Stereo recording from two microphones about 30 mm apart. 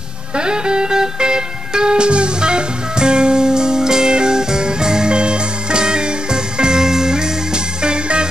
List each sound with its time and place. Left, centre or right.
0.5 s music: right